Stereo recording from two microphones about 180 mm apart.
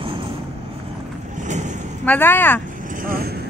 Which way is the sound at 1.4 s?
40° right (ahead or behind).